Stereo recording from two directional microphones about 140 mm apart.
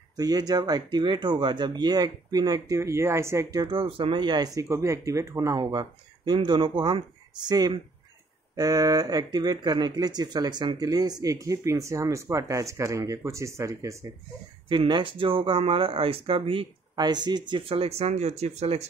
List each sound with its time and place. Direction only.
0.2 s speech: 25° right (ahead or behind)
3.7 s speech: 40° right (ahead or behind); by 13.9 s 20° right (ahead or behind)
14.7 s speech: 35° right (ahead or behind); by 18.9 s 50° right (ahead or behind)